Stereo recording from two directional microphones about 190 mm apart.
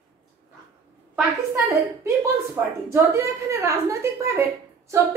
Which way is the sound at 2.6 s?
10° right (ahead or behind).